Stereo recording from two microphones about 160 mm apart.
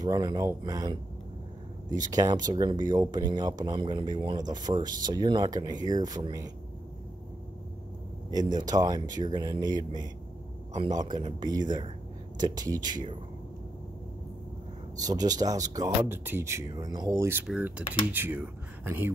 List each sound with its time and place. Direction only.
0.0 s speech: 25° right (ahead or behind)
2.0 s speech: 25° right (ahead or behind)
8.3 s speech: 25° right (ahead or behind)
15.0 s speech: 25° right (ahead or behind)